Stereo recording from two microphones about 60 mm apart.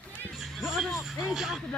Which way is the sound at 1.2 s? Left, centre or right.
Centre.